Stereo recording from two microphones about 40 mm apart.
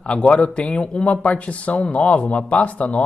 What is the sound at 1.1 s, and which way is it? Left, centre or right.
A man's voice, left.